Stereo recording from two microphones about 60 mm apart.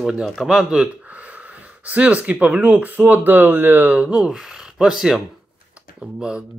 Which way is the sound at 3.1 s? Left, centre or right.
Right.